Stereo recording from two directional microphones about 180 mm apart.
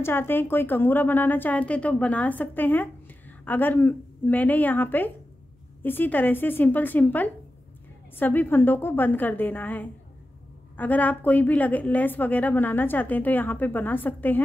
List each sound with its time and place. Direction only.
0.0 s a woman's voice: 10° left (ahead or behind)